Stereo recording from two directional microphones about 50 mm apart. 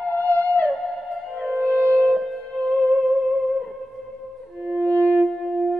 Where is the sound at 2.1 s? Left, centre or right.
Centre.